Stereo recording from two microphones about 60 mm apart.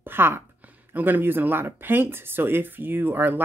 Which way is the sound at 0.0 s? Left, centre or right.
Right.